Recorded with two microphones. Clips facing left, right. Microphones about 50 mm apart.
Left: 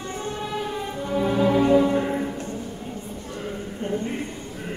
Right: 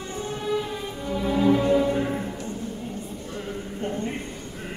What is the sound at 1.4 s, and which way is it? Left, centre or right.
Music, centre.